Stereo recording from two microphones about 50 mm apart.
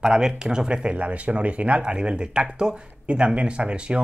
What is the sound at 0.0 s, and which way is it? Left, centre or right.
Speech, centre.